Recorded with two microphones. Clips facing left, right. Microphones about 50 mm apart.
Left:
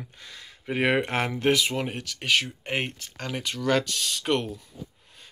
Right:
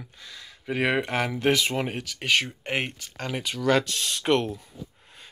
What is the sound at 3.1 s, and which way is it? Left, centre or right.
Speech, centre.